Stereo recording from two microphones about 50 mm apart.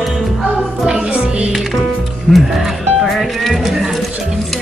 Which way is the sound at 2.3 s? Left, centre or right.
Centre.